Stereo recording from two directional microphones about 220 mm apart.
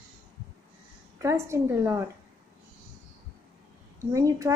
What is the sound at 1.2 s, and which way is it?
Speech, 15° right (ahead or behind).